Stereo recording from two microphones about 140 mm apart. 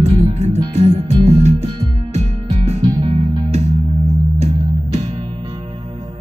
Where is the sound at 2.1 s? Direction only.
50° right (ahead or behind).